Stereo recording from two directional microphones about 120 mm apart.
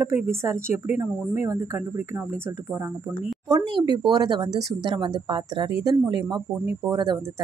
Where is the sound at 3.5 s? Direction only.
35° right (ahead or behind).